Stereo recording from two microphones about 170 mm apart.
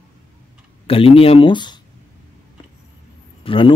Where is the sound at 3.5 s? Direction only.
30° left (ahead or behind).